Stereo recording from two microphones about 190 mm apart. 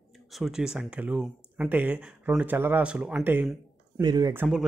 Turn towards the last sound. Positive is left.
turn(degrees=-10)  # may be behind; listen again after turning